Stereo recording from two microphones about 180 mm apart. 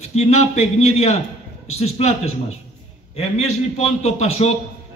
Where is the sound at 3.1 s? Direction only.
35° left (ahead or behind).